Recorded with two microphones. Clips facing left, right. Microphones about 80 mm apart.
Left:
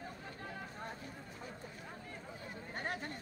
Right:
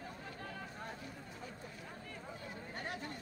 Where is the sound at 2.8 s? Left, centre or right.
Left.